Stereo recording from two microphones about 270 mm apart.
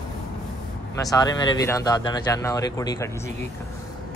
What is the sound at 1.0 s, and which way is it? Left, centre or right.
Speech, centre.